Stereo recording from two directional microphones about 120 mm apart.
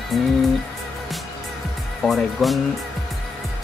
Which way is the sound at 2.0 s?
Centre (ahead or behind).